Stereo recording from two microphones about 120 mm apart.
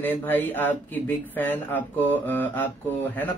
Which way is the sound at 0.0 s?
15° left (ahead or behind).